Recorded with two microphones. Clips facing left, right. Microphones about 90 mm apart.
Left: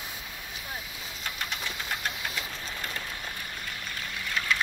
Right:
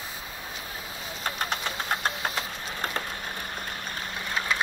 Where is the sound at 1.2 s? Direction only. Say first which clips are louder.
Right 5 dB; 40° right (ahead or behind).